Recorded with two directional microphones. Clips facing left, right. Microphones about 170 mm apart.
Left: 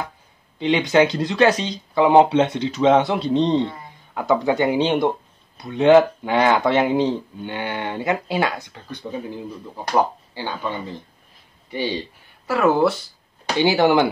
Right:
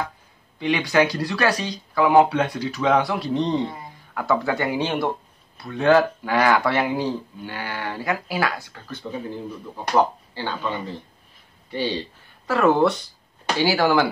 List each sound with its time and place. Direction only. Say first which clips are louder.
0.6 s speech: left 3 dB; 20° left (ahead or behind); by 13.0 s 5° left (ahead or behind)
13.6 s speech: left 3 dB; 20° left (ahead or behind)